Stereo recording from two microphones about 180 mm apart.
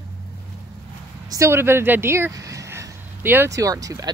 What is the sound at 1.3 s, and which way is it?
Speech, 15° right (ahead or behind).